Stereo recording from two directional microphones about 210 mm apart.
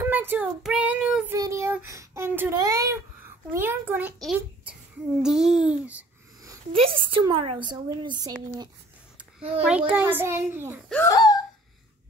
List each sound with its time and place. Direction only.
0.0 s child singing: 10° right (ahead or behind)
5.2 s a child's voice: 5° right (ahead or behind)
5.7 s child singing: 5° right (ahead or behind)
6.4 s a sound: 15° right (ahead or behind)
6.8 s a woman's voice: 25° right (ahead or behind)
9.7 s child singing: 5° right (ahead or behind)
10.9 s speech: 15° left (ahead or behind)